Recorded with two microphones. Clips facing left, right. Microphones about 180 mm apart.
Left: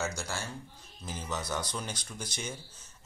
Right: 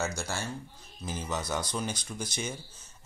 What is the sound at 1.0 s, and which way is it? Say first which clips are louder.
Speech: right 3 dB; 10° right (ahead or behind).